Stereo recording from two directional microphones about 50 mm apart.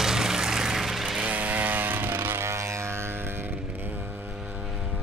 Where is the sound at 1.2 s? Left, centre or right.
Right.